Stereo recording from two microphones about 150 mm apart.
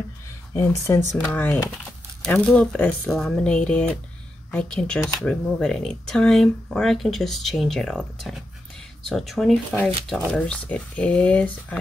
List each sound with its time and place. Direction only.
0.5 s speech: 20° left (ahead or behind)